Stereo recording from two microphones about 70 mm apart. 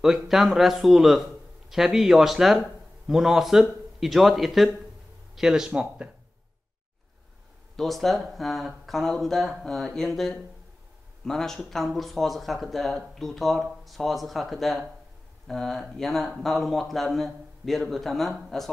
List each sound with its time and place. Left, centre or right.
0.0 s speech: centre
7.7 s speech: centre